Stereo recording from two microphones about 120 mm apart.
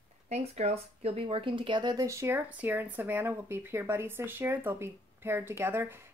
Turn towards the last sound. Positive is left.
turn(degrees=-20)  # may be behind; listen again after turning